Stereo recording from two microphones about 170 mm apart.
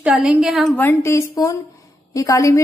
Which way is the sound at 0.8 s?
15° left (ahead or behind).